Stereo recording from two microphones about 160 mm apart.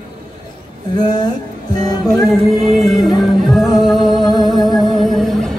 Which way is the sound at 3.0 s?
Centre (ahead or behind).